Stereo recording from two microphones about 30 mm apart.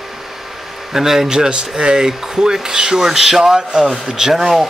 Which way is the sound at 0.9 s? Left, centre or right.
Centre.